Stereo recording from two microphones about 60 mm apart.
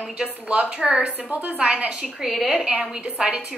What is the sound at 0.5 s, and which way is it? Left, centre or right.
A woman's voice, centre.